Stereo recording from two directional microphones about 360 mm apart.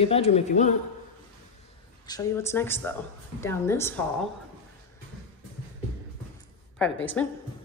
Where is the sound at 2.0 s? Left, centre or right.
Centre.